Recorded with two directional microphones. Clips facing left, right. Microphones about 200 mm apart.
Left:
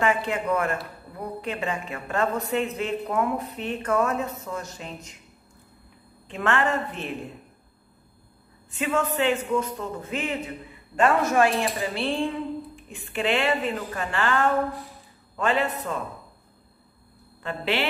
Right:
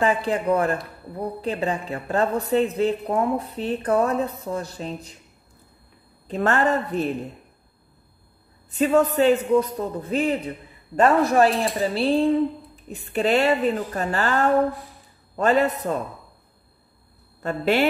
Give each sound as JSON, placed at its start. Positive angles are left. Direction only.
{"t": 0.0, "sound": "a woman's voice", "side_deg": -35}
{"t": 6.2, "sound": "a woman's voice", "side_deg": -40}
{"t": 8.7, "sound": "a woman's voice", "side_deg": -35}
{"t": 17.4, "sound": "speech", "side_deg": -45}